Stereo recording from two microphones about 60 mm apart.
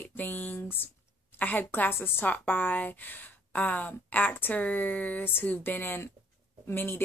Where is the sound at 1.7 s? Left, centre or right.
Left.